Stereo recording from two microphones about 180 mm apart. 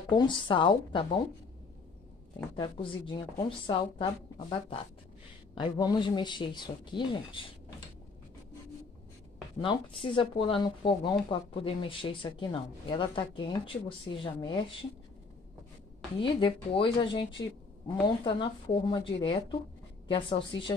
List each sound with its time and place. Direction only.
0.1 s speech: 25° left (ahead or behind)
2.5 s speech: 25° left (ahead or behind)
9.6 s speech: 30° left (ahead or behind)
16.2 s speech: 30° left (ahead or behind)